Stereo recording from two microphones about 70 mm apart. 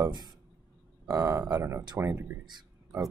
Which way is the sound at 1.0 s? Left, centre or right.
Right.